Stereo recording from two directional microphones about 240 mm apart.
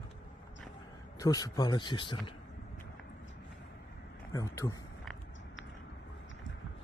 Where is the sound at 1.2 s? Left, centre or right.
Centre.